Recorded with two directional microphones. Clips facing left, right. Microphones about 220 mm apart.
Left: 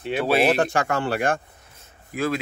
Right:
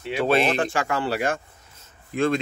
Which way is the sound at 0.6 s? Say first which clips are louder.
Left 2 dB; 55° left (ahead or behind).